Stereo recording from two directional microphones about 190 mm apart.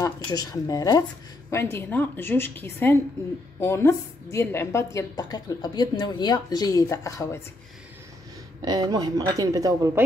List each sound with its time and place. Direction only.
0.0 s a woman's voice: 20° left (ahead or behind)
8.6 s a woman's voice: 20° right (ahead or behind)